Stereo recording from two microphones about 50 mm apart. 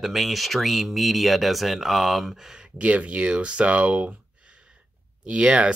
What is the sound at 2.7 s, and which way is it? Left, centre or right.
Speech, right.